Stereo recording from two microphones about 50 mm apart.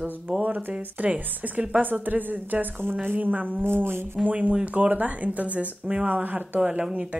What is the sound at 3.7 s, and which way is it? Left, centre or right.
Speech, right.